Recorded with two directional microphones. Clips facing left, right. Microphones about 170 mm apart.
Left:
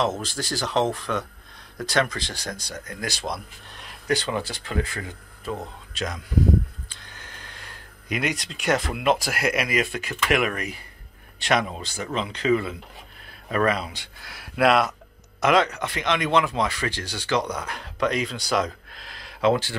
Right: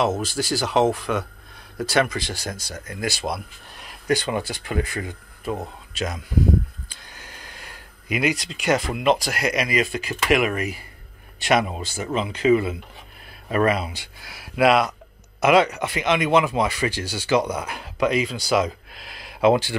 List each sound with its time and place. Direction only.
0.0 s speech: 10° right (ahead or behind)